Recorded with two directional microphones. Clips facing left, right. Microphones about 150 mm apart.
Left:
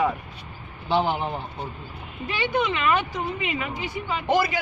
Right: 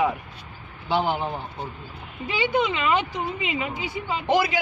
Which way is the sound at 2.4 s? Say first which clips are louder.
Right 1 dB; 20° right (ahead or behind).